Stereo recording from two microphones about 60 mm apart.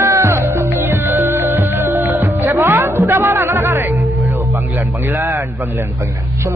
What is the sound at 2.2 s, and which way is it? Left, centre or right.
Music, right.